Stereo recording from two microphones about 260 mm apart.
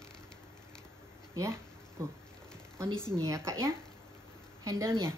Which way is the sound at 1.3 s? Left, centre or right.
Centre.